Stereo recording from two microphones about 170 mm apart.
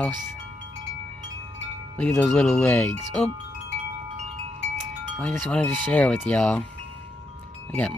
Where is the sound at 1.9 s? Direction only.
5° left (ahead or behind).